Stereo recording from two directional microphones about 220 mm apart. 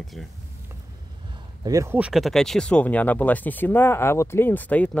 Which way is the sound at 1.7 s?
15° right (ahead or behind).